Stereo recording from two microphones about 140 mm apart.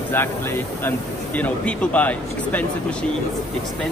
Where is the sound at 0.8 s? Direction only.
10° left (ahead or behind).